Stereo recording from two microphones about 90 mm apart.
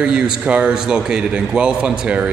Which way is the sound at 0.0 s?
10° right (ahead or behind).